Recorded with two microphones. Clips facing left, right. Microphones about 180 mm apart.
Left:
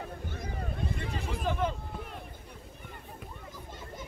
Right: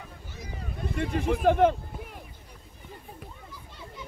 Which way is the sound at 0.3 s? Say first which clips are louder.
Left 3 dB; 55° left (ahead or behind).